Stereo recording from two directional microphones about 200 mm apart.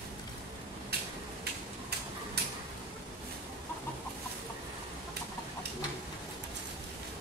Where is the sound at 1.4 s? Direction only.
55° right (ahead or behind).